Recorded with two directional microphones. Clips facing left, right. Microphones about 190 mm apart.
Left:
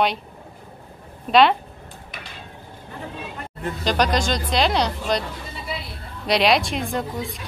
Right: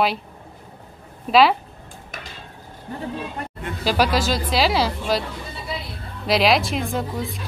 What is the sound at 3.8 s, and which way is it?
A woman's voice, 5° right (ahead or behind).